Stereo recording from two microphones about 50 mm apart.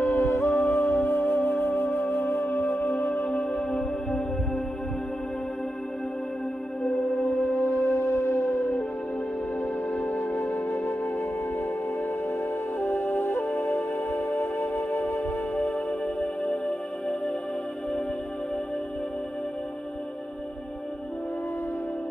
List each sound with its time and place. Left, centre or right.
0.0 s music: left
2.9 s music: left
7.6 s music: left
9.6 s music: left
10.5 s music: left
12.8 s music: left
15.5 s music: centre